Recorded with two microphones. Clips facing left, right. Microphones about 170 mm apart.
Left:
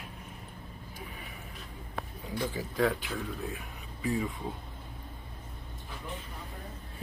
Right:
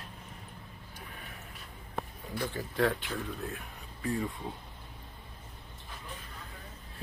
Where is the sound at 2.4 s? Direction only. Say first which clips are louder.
Left 1 dB; centre (ahead or behind).